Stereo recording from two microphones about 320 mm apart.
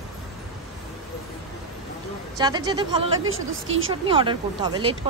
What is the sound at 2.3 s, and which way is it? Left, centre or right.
Speech, centre.